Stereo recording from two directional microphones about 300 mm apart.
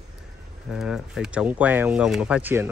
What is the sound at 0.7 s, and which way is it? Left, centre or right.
Speech, centre.